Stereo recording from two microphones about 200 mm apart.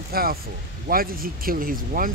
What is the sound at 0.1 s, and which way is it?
Speech, 50° right (ahead or behind).